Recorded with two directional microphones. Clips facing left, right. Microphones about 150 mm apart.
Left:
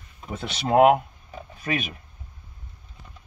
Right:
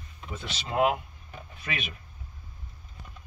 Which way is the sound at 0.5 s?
60° left (ahead or behind).